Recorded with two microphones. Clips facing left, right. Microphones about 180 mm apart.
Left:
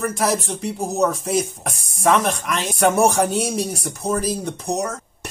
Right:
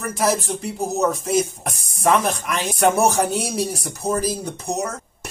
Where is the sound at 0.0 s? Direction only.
Centre (ahead or behind).